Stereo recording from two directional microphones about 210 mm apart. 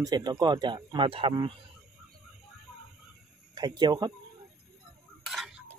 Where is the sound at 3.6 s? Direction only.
20° right (ahead or behind).